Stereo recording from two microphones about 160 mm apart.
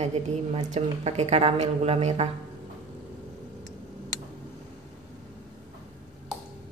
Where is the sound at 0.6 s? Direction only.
45° right (ahead or behind).